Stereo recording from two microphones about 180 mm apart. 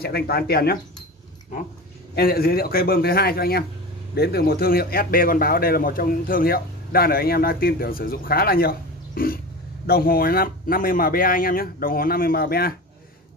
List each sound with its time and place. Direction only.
0.0 s a man's voice: 60° left (ahead or behind)
2.1 s a man's voice: 55° left (ahead or behind)